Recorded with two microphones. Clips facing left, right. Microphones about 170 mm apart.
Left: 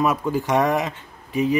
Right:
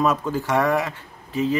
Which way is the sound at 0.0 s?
10° left (ahead or behind).